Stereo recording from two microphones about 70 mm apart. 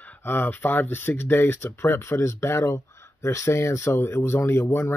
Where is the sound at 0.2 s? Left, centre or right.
Left.